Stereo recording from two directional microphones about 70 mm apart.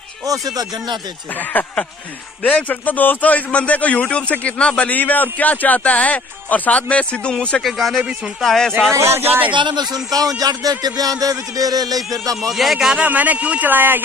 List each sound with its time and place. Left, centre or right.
0.3 s a man's voice: right
1.5 s a man's voice: left
7.6 s a man's voice: centre
8.9 s speech: right
10.1 s a man's voice: right
12.4 s a man's voice: centre
12.9 s a man's voice: right